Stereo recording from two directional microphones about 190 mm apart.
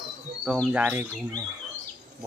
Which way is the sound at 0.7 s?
10° right (ahead or behind).